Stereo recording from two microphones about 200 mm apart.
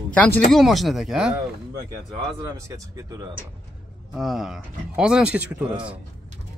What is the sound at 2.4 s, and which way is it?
Speech, 15° right (ahead or behind).